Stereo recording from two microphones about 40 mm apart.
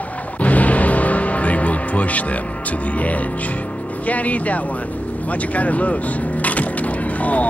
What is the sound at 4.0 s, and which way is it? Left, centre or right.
Speech, left.